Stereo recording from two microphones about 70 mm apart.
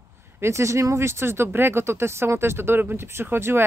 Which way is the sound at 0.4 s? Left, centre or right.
Right.